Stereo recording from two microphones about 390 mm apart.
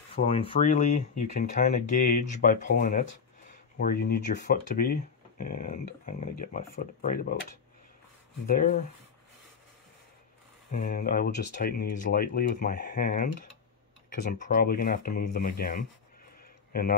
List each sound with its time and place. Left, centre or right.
0.1 s speech: centre
8.5 s speech: centre
10.7 s speech: left
14.4 s speech: left